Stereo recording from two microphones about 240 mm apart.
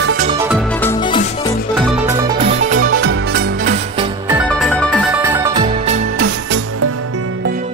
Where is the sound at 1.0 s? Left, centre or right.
Centre.